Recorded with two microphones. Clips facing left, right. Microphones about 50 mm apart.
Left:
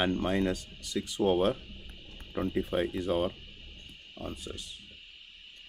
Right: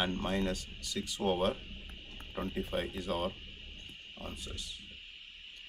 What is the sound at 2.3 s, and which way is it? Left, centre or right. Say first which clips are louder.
Speech: left 6 dB; left.